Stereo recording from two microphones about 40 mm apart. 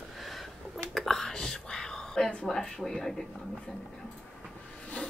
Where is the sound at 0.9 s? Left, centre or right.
Centre.